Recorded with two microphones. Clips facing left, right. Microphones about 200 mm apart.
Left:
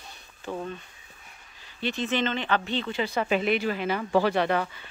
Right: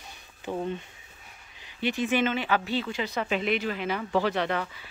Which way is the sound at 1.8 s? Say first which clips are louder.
Right 2 dB; 15° right (ahead or behind).